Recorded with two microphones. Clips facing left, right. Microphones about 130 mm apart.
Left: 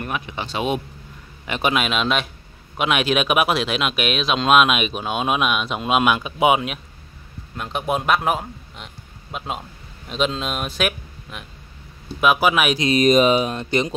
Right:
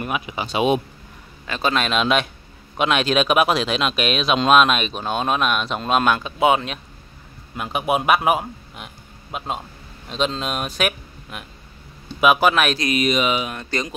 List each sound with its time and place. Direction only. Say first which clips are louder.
0.0 s speech: right 2 dB; 5° right (ahead or behind)
1.5 s speech: even; 15° left (ahead or behind)
7.5 s a man's voice: right 2 dB; 5° right (ahead or behind)
12.9 s speech: left 8 dB; 40° left (ahead or behind)
13.6 s speech: left 5 dB; 20° left (ahead or behind)